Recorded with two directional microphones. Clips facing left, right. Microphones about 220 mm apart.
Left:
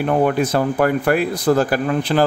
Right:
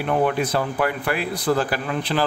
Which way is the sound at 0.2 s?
45° left (ahead or behind).